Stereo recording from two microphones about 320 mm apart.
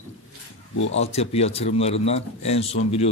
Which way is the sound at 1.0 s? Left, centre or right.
Centre.